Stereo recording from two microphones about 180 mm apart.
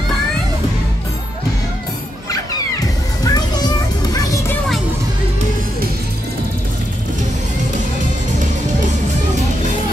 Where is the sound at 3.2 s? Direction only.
20° left (ahead or behind).